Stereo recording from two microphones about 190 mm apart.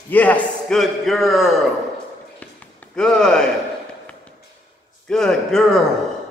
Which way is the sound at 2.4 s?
5° left (ahead or behind).